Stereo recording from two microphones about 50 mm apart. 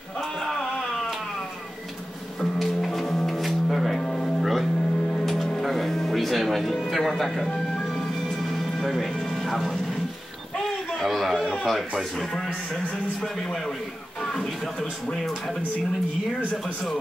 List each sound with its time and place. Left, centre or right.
2.6 s music: centre
8.5 s music: centre
9.5 s speech: centre
11.0 s a sound: centre
14.2 s music: centre